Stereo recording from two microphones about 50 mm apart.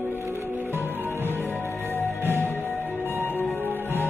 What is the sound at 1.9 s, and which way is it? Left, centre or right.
Music, left.